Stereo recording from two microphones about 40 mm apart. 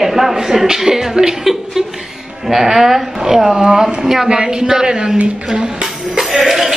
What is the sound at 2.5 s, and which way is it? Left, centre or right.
A man's voice, centre.